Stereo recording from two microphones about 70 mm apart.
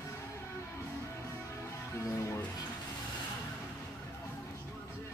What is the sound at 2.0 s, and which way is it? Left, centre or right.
Music, left.